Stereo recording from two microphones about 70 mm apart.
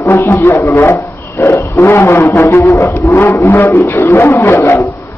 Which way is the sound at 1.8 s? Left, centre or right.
Left.